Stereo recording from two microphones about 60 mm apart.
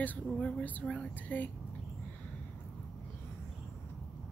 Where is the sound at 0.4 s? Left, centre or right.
Centre.